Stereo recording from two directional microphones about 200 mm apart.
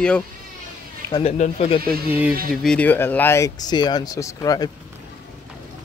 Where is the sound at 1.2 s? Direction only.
35° left (ahead or behind).